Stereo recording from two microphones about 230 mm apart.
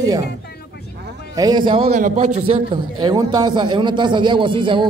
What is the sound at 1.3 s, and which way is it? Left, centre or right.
A man's voice, centre.